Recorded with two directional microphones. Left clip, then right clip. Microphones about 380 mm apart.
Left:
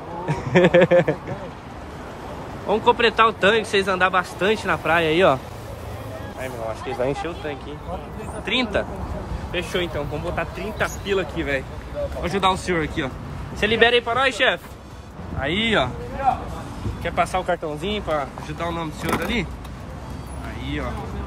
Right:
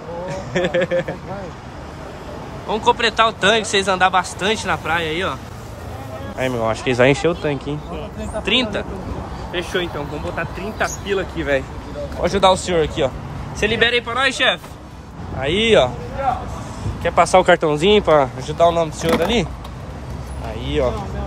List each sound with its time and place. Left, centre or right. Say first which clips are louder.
0.3 s speech: left 5 dB; centre
2.7 s speech: right 1 dB; centre
6.4 s speech: right 10 dB; centre
8.5 s speech: right 3 dB; centre
17.0 s speech: right 7 dB; centre
17.5 s speech: right 11 dB; right
18.6 s speech: right 13 dB; centre